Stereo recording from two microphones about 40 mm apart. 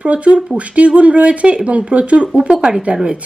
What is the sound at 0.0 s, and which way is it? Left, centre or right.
A woman's voice, right.